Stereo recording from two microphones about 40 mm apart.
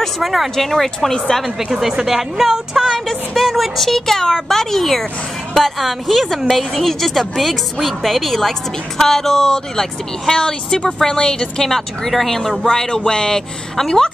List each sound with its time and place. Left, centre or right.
0.0 s speech: centre
1.6 s a woman's voice: centre
11.7 s a woman's voice: centre
12.6 s a woman's voice: centre